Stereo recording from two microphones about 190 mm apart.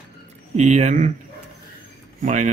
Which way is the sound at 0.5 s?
35° right (ahead or behind).